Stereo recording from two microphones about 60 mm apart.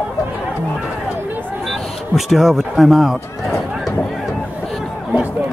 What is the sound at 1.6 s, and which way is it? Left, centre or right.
Speech, centre.